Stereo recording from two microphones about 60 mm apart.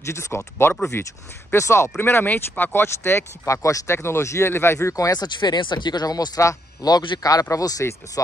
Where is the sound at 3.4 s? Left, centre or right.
Left.